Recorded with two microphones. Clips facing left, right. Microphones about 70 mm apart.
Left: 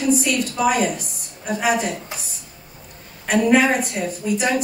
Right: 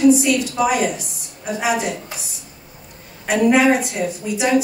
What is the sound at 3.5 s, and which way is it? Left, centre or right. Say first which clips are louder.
Speech: right 2 dB; left.